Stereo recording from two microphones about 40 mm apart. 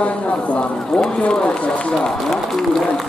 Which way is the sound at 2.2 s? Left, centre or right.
Centre.